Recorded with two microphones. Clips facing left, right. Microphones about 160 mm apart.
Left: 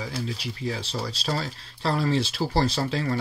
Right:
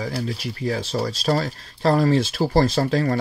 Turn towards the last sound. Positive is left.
turn(degrees=-45)  # may be behind; listen again after turning